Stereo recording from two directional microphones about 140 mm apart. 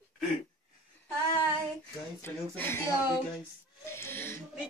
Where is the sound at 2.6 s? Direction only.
15° left (ahead or behind).